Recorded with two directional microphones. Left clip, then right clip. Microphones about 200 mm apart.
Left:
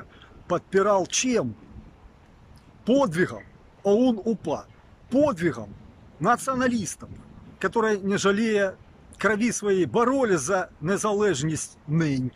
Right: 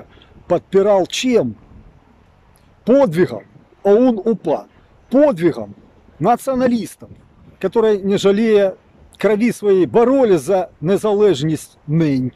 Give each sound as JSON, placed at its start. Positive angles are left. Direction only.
{"t": 0.5, "sound": "speech", "side_deg": -20}
{"t": 2.8, "sound": "speech", "side_deg": -20}